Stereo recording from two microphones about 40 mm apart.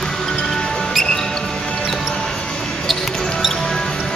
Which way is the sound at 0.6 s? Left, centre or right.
Left.